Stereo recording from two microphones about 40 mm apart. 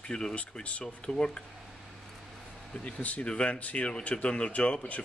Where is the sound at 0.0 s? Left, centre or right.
Left.